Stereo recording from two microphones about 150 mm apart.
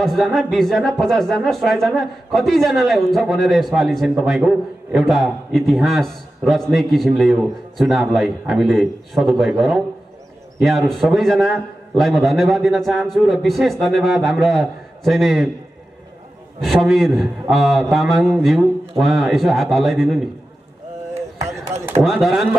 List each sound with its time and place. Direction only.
0.0 s speech: centre (ahead or behind)
16.6 s speech: centre (ahead or behind)
21.1 s chop: 20° right (ahead or behind)
22.0 s speech: centre (ahead or behind)